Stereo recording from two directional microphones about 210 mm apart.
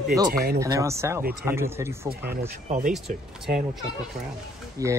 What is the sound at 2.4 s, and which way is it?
Speech, 40° right (ahead or behind).